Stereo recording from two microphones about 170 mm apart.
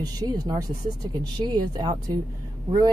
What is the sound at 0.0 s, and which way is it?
A woman's voice, 25° right (ahead or behind).